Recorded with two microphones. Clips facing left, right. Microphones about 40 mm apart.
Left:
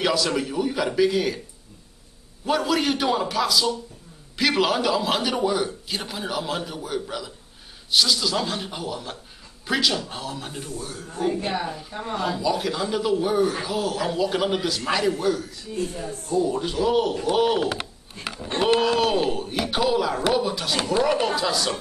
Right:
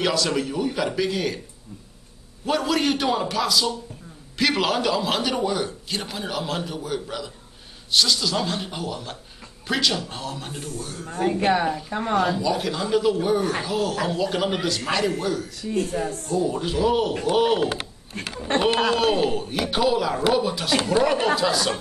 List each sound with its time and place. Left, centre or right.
0.0 s a man's voice: centre
2.4 s a man's voice: centre
11.3 s a woman's voice: right
12.3 s a man's voice: centre
15.7 s speech: right
16.3 s a man's voice: centre
18.1 s speech: right
18.9 s a man's voice: centre